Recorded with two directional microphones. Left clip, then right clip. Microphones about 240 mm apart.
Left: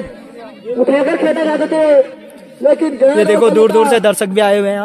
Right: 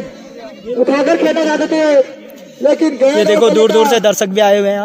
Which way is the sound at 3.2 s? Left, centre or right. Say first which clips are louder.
Right 1 dB; centre.